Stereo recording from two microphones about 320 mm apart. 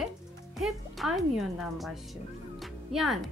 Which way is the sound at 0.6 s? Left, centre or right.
Centre.